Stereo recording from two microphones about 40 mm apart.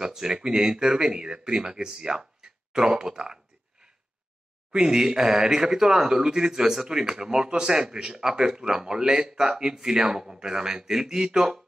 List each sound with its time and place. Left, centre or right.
0.0 s speech: centre
4.7 s speech: centre